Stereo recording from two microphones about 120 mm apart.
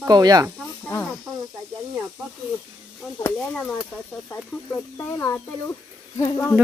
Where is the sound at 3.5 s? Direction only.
5° left (ahead or behind).